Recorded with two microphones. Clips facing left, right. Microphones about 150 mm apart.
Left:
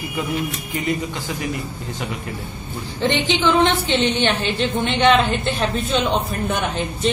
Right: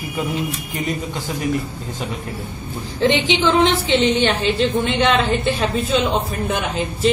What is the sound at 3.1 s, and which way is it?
Speech, 90° right.